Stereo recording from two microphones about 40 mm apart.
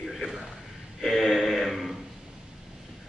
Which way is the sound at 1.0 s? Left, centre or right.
Centre.